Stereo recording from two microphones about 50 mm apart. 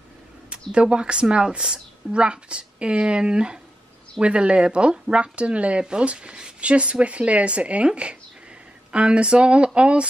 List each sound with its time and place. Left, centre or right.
0.5 s speech: right